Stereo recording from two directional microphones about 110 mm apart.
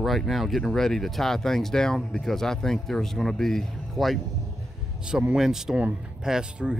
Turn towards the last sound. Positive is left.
turn(degrees=-5)  # may be behind; listen again after turning